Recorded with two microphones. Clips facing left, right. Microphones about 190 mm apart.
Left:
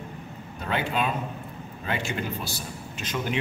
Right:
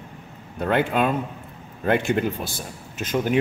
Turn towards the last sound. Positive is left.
turn(degrees=-45)  # may be behind; listen again after turning